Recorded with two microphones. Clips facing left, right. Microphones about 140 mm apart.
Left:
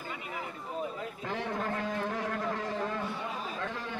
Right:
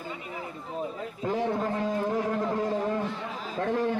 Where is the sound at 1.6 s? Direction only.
20° right (ahead or behind).